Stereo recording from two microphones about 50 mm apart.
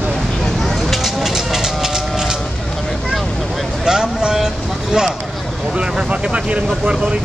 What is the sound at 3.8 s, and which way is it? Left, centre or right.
Speech, centre.